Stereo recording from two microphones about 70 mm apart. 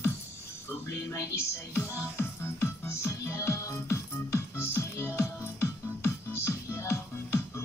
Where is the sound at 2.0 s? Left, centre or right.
Left.